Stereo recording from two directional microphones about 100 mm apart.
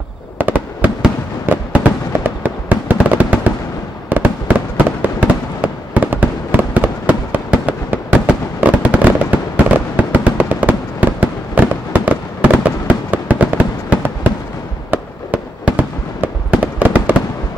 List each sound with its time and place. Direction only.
0.4 s fireworks: 20° right (ahead or behind)